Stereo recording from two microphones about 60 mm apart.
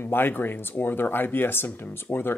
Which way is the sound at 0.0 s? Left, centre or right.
Left.